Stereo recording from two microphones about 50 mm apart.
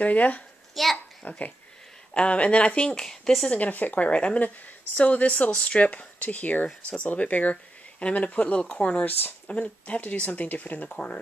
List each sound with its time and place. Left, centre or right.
0.0 s speech: left
0.8 s a child's voice: centre
1.2 s speech: left; by 3.4 s centre
3.4 s speech: left
8.7 s speech: left